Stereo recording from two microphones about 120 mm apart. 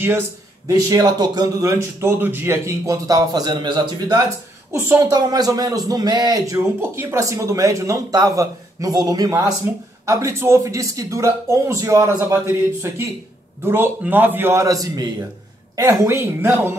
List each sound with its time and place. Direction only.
0.7 s a man's voice: 30° right (ahead or behind)
4.7 s a woman's voice: 20° right (ahead or behind)
5.0 s a man's voice: 35° right (ahead or behind)